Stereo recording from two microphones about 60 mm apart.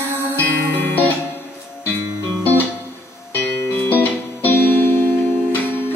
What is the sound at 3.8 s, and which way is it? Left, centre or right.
Music, left.